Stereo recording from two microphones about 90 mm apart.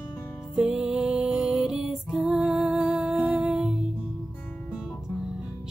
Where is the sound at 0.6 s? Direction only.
5° right (ahead or behind).